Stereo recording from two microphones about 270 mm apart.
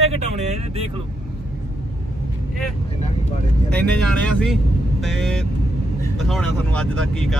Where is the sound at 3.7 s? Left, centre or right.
Centre.